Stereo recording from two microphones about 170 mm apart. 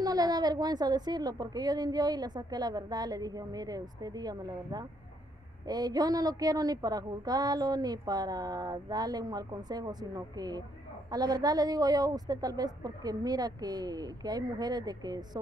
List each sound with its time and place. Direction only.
0.0 s a woman's voice: 20° right (ahead or behind)